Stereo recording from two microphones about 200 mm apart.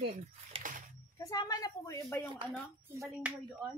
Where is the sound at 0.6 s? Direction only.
40° right (ahead or behind).